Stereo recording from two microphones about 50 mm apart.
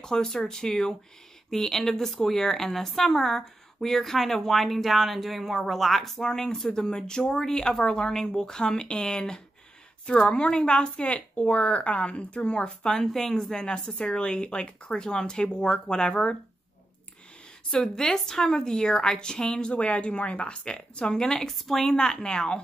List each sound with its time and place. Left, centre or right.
0.0 s a woman's voice: centre
12.6 s a woman's voice: centre
17.6 s a woman's voice: centre